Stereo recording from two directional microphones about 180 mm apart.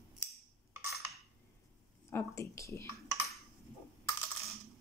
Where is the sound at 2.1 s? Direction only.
15° left (ahead or behind).